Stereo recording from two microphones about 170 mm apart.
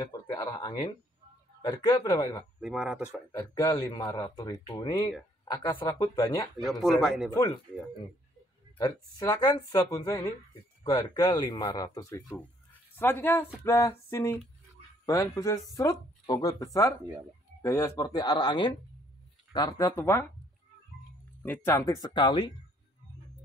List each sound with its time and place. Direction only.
0.0 s a sound: 20° left (ahead or behind)
1.6 s speech: 25° left (ahead or behind)
2.6 s speech: 5° right (ahead or behind)
3.3 s speech: 25° left (ahead or behind)
6.6 s speech: centre (ahead or behind)
8.7 s speech: 20° left (ahead or behind)
12.9 s a sound: 10° left (ahead or behind)
15.0 s speech: 20° left (ahead or behind)
20.0 s a sound: 15° left (ahead or behind)
21.4 s speech: 15° left (ahead or behind); by 22.5 s 30° left (ahead or behind)